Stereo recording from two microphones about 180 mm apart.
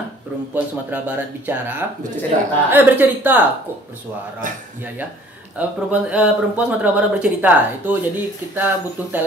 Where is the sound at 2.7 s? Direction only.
10° right (ahead or behind).